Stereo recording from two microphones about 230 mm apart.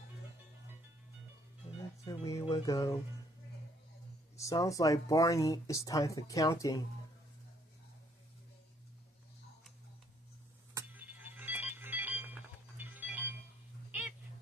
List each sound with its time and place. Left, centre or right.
2.0 s music: centre
4.4 s speech: centre
10.7 s music: centre